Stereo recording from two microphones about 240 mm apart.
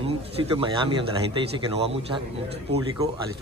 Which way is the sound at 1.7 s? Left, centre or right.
Right.